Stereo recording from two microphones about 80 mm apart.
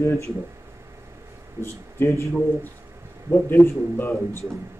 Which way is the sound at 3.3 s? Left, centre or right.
Left.